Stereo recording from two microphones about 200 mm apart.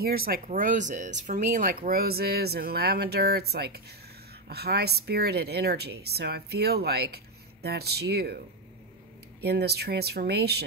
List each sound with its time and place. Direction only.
0.0 s speech: 50° right (ahead or behind)
9.4 s speech: 55° right (ahead or behind)